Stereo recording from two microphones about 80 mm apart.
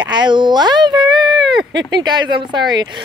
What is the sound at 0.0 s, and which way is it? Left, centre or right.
Speech, right.